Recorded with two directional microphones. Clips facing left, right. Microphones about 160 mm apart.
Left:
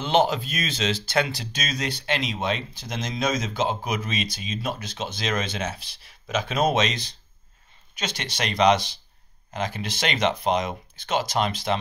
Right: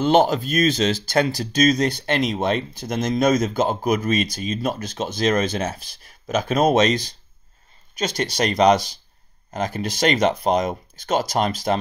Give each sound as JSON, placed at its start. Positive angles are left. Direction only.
{"t": 0.0, "sound": "speech", "side_deg": -45}